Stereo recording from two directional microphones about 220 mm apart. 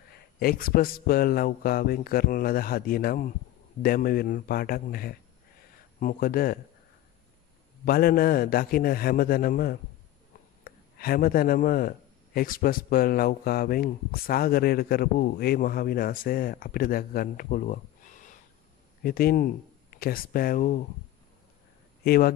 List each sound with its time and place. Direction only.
0.1 s speech: 45° left (ahead or behind)
7.8 s speech: 40° left (ahead or behind)
22.0 s speech: 45° left (ahead or behind)